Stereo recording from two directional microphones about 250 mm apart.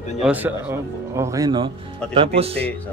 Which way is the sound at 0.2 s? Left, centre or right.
Centre.